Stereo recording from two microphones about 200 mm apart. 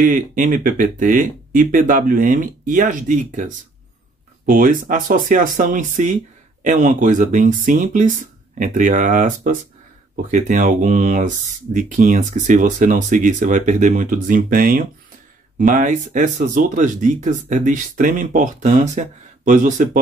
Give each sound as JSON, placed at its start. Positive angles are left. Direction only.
{"t": 0.0, "sound": "speech", "side_deg": -40}